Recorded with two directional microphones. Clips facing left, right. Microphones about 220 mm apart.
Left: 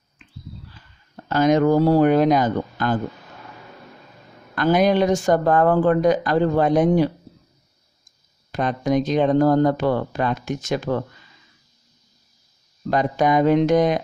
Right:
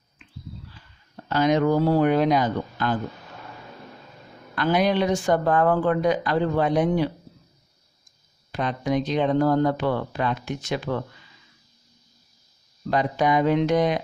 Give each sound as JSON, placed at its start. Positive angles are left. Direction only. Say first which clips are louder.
{"t": 1.3, "sound": "speech", "louder": "left 4 dB", "side_deg": 45}
{"t": 4.6, "sound": "speech", "louder": "left 4 dB", "side_deg": 45}
{"t": 8.5, "sound": "speech", "louder": "left 4 dB", "side_deg": 45}
{"t": 12.9, "sound": "speech", "louder": "left 3 dB", "side_deg": 45}